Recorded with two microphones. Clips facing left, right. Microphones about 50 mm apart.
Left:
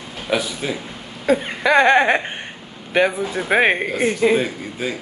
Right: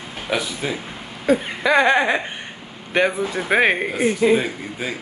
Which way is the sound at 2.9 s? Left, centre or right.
Centre.